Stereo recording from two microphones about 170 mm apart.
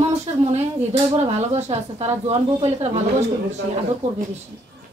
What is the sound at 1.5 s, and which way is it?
Speech, 40° right (ahead or behind).